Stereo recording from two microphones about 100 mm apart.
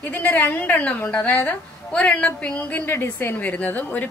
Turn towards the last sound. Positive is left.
turn(degrees=15)  # may be behind; listen again after turning